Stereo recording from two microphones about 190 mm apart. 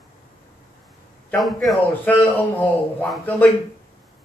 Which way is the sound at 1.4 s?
Centre (ahead or behind).